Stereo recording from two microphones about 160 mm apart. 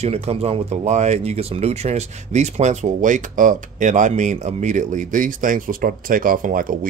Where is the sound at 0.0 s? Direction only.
40° right (ahead or behind).